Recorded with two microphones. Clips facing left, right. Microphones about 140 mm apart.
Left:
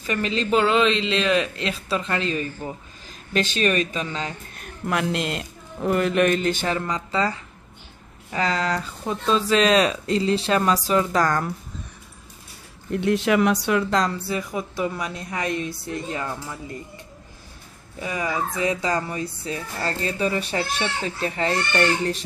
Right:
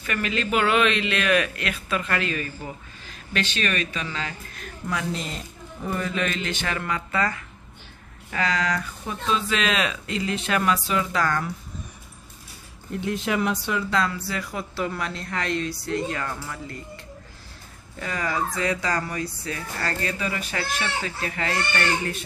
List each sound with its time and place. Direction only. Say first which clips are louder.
0.0 s speech: left 2 dB; 30° left (ahead or behind)
3.3 s speech: left 5 dB; 40° left (ahead or behind)
4.1 s speech: left 2 dB; 30° left (ahead or behind)
4.8 s a man's voice: left 5 dB; 75° left (ahead or behind); by 6.8 s 40° left (ahead or behind)
6.8 s speech: left 2 dB; 25° left (ahead or behind); by 11.5 s 40° left (ahead or behind)
13.0 s speech: left 6 dB; 75° left (ahead or behind)
13.8 s speech: left 2 dB; 40° left (ahead or behind)
14.2 s a woman's voice: left 4 dB; 20° left (ahead or behind)
17.9 s speech: left 1 dB; 15° left (ahead or behind)